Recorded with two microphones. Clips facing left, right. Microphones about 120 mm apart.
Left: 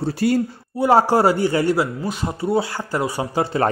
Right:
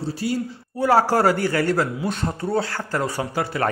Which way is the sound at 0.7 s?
15° left (ahead or behind).